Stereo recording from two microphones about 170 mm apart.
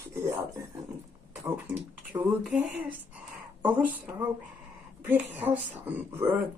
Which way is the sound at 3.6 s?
10° right (ahead or behind).